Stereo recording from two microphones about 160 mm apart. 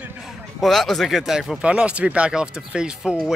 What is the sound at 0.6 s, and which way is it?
Speech, centre (ahead or behind).